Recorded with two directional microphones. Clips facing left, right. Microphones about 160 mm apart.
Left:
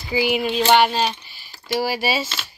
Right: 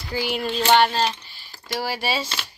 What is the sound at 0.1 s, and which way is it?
Speech, 5° left (ahead or behind).